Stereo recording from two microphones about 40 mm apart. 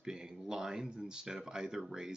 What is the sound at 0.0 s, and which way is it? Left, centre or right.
Speech, centre.